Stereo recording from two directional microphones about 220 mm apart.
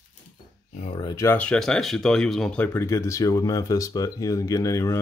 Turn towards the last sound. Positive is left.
turn(degrees=15)  # may be behind; listen again after turning